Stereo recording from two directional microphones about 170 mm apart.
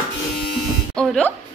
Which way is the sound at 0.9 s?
5° left (ahead or behind).